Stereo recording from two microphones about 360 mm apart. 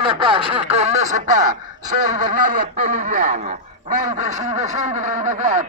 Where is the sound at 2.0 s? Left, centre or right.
Right.